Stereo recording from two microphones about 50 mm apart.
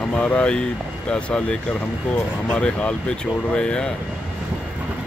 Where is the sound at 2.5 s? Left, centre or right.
Left.